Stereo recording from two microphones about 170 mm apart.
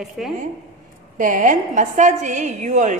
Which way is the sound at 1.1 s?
50° right (ahead or behind).